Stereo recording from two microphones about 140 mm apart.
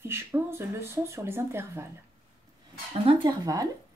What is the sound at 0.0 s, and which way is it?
Speech, 15° right (ahead or behind).